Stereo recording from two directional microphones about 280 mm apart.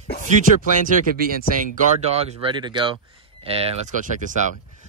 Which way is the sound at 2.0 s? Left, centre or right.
Right.